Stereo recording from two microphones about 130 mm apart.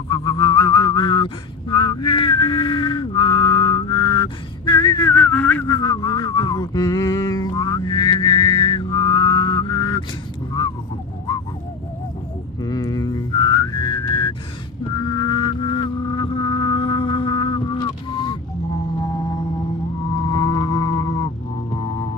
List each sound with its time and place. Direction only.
0.1 s a sound: 35° left (ahead or behind)
5.1 s whistling: 10° left (ahead or behind)
5.7 s a sound: 30° left (ahead or behind)
12.6 s whistling: 30° left (ahead or behind)
15.0 s vehicle: 35° left (ahead or behind)
20.2 s music: 30° left (ahead or behind)